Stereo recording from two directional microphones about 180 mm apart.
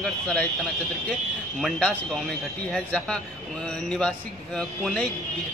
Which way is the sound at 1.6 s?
5° left (ahead or behind).